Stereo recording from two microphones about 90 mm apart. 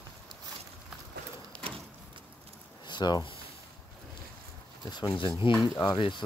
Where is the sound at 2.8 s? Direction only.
55° left (ahead or behind).